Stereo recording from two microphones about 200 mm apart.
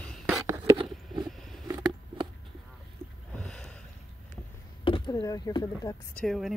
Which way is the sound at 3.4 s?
5° left (ahead or behind).